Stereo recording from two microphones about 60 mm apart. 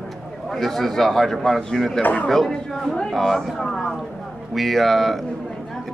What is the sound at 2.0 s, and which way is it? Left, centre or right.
Speech, left.